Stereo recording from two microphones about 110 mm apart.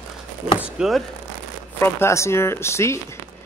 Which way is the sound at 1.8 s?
25° left (ahead or behind).